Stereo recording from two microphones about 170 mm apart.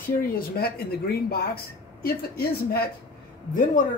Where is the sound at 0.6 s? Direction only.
65° left (ahead or behind).